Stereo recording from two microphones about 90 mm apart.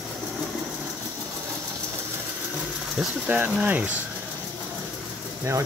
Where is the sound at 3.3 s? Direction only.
20° right (ahead or behind).